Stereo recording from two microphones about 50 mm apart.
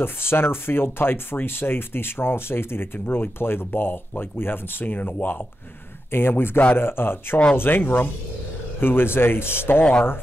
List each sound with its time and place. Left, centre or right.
0.0 s speech: left
6.1 s speech: left